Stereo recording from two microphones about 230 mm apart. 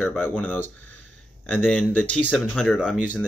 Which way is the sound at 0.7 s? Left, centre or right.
Left.